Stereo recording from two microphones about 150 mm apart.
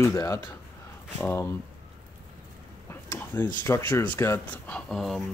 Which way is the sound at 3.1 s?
15° left (ahead or behind).